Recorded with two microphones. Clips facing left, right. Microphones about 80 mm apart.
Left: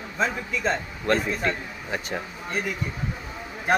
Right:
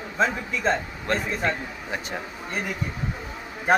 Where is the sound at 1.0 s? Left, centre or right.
Centre.